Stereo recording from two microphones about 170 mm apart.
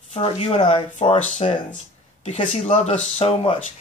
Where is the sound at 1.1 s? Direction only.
45° left (ahead or behind).